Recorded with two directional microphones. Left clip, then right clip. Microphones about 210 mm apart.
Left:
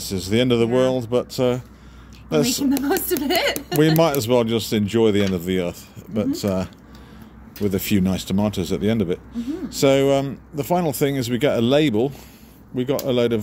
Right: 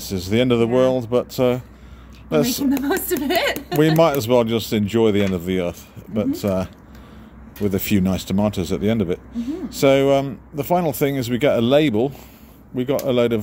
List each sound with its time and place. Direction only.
0.0 s speech: centre (ahead or behind)